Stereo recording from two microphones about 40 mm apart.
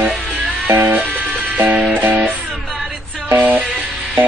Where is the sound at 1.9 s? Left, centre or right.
Right.